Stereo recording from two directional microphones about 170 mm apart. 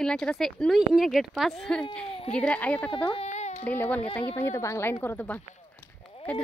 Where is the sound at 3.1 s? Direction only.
40° left (ahead or behind).